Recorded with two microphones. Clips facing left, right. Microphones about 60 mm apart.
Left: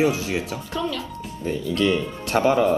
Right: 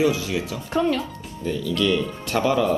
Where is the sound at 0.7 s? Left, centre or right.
Right.